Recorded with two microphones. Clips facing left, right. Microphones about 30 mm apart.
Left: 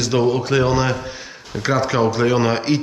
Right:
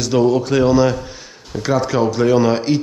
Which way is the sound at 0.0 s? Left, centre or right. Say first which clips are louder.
Right 3 dB; centre.